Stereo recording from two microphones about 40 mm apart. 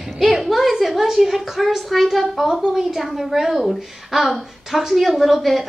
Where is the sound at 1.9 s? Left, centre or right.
Centre.